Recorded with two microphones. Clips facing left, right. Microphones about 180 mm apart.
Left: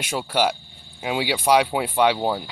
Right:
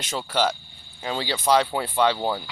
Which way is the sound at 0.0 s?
10° left (ahead or behind).